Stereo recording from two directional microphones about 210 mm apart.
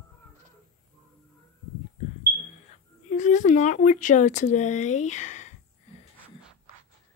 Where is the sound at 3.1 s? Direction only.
35° left (ahead or behind).